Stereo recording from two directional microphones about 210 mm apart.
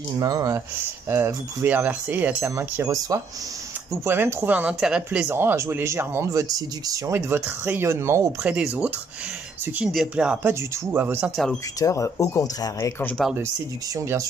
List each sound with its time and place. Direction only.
0.2 s speech: 15° right (ahead or behind)
11.8 s speech: 15° left (ahead or behind)
13.2 s speech: 5° right (ahead or behind)